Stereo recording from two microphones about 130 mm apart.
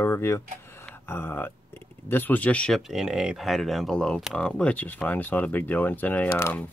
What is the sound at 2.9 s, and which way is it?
Speech, 5° right (ahead or behind).